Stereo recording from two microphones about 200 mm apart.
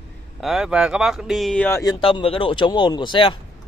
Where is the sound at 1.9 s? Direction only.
25° left (ahead or behind).